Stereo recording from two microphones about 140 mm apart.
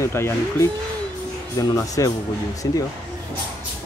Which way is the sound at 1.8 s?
20° left (ahead or behind).